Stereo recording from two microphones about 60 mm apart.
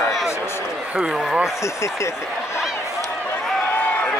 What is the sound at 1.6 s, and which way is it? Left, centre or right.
Speech, left.